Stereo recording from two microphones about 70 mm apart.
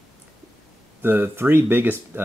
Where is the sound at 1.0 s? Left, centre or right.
Right.